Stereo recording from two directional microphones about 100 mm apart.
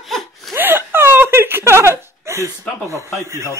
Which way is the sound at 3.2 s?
30° right (ahead or behind).